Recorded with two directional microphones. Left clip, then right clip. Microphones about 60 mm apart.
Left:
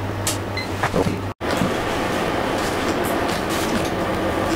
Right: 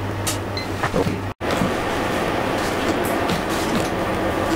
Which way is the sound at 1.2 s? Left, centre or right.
Centre.